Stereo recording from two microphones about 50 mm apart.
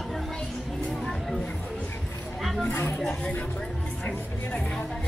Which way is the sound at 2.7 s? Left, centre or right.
Left.